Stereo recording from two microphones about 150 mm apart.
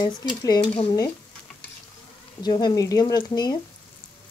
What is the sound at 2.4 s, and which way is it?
Speech, 25° left (ahead or behind).